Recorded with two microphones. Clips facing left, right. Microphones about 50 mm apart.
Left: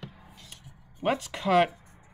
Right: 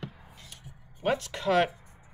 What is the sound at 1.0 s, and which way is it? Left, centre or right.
Speech, centre.